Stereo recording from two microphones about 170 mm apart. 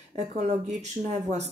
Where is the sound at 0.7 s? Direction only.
40° right (ahead or behind).